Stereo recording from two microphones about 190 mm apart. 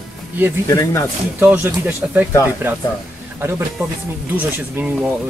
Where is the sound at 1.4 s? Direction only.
10° right (ahead or behind).